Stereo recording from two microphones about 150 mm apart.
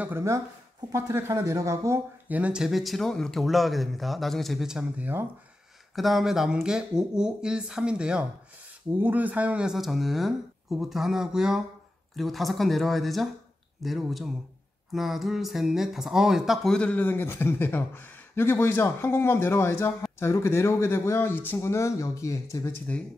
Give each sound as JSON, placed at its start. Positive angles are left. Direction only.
{"t": 0.0, "sound": "speech", "side_deg": -15}
{"t": 5.9, "sound": "speech", "side_deg": 0}